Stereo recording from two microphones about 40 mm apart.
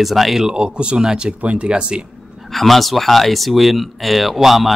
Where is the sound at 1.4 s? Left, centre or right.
Right.